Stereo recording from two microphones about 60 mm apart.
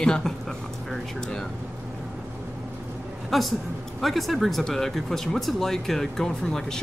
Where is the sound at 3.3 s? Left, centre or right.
Centre.